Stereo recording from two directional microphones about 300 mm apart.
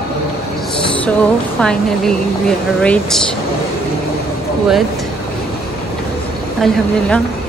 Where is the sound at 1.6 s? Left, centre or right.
Centre.